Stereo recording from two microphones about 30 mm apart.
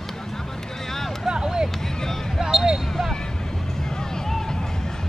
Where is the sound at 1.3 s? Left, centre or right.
Right.